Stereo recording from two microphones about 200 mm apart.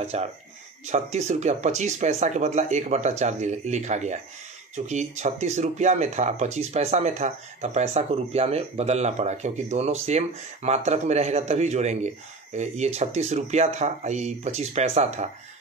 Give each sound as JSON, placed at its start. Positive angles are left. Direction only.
{"t": 0.0, "sound": "speech", "side_deg": -30}